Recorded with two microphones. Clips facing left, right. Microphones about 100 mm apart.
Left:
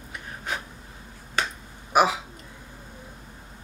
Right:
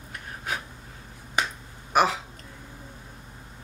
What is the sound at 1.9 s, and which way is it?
Hiccup, 5° left (ahead or behind).